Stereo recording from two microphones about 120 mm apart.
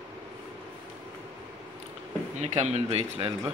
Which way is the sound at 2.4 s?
70° right (ahead or behind).